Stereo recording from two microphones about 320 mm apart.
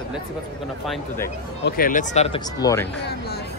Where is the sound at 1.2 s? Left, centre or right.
Left; by 2.9 s centre.